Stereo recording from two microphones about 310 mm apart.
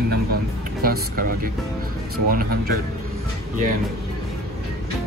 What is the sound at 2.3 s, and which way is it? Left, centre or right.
Speech, right.